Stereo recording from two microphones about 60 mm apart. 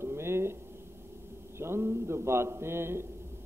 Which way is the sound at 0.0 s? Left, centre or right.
Right.